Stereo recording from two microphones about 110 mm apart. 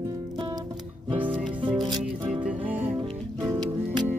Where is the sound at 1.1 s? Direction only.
50° right (ahead or behind).